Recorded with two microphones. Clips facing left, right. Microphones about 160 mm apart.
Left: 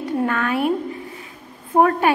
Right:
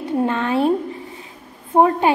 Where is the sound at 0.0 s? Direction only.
25° right (ahead or behind).